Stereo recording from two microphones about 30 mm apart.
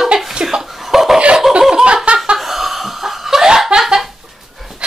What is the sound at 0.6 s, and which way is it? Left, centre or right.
Chuckle, centre.